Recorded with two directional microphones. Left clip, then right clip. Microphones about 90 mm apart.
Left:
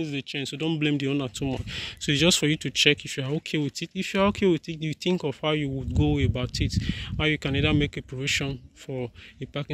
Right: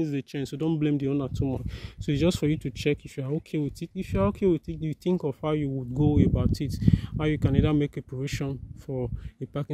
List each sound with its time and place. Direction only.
0.7 s speech: 40° right (ahead or behind); by 4.9 s 20° right (ahead or behind)
5.0 s speech: 35° right (ahead or behind)
5.9 s speech: 45° right (ahead or behind)